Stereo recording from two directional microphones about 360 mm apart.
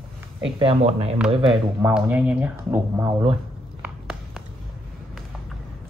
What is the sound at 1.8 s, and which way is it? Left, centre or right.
Speech, centre.